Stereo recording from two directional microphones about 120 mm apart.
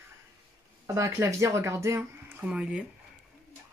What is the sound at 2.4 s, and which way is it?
Speech, 10° right (ahead or behind).